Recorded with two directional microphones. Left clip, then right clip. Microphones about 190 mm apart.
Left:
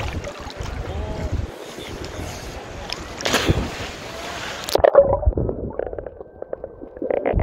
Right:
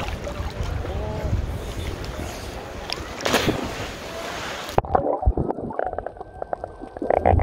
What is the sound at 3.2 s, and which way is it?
Boat, centre (ahead or behind).